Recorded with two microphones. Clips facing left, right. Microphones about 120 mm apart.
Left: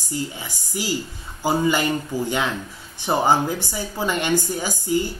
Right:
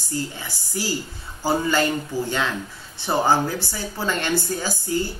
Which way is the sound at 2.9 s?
15° left (ahead or behind).